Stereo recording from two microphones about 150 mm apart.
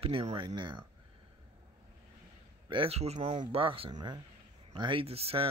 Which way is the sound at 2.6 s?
35° right (ahead or behind).